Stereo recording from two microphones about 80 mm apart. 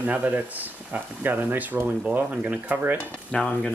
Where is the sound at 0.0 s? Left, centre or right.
Right.